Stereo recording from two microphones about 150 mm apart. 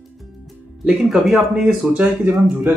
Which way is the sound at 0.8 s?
5° right (ahead or behind).